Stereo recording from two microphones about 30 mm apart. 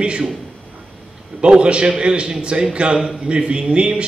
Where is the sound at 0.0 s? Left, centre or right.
Right.